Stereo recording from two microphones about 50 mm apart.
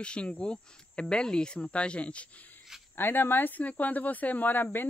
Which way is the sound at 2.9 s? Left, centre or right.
Left.